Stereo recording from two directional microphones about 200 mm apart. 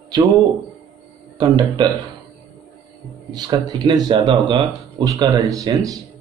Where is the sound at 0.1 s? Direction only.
20° right (ahead or behind).